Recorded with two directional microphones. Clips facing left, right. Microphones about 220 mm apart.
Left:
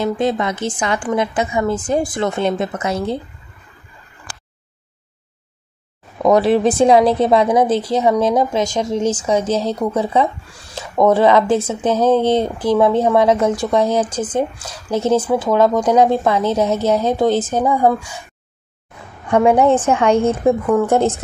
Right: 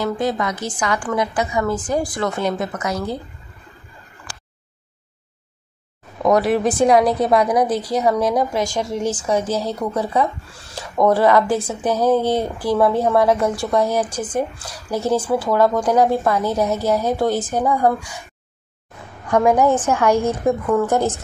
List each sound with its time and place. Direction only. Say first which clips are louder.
0.0 s speech: left 3 dB; 25° left (ahead or behind)
6.2 s speech: left 3 dB; 25° left (ahead or behind)
19.2 s speech: left 3 dB; 30° left (ahead or behind)
19.8 s speech: left 3 dB; 20° left (ahead or behind)